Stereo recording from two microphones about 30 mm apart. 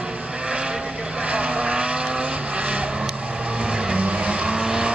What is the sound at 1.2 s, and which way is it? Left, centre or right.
Vehicle, right.